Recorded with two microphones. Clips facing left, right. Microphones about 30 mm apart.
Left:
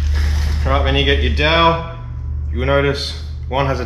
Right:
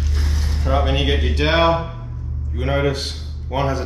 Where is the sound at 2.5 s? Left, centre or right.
Left.